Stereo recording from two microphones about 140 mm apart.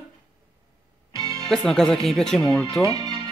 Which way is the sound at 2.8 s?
30° right (ahead or behind).